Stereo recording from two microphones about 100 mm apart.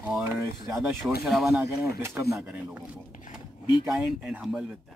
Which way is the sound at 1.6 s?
25° right (ahead or behind).